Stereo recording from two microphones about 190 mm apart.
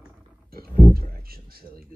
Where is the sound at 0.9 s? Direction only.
50° right (ahead or behind).